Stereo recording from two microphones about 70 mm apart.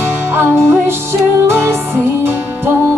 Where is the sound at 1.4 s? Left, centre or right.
Right.